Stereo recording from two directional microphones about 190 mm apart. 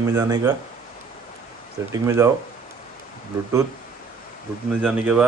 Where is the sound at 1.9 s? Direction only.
15° right (ahead or behind).